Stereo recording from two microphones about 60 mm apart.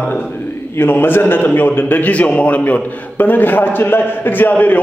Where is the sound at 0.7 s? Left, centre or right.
Left.